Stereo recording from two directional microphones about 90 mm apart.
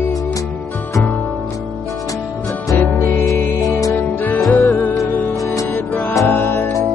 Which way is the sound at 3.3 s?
30° left (ahead or behind).